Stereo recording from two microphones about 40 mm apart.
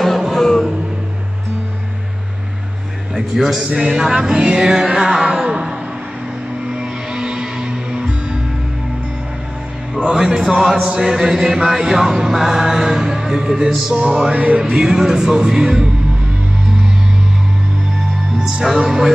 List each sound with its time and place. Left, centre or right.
0.3 s music: centre
3.2 s a man's voice: centre
3.7 s mantra: right
5.3 s a sound: centre
6.7 s music: centre
10.0 s music: centre
10.4 s mantra: centre
14.3 s music: right
14.6 s mantra: centre
18.4 s mantra: centre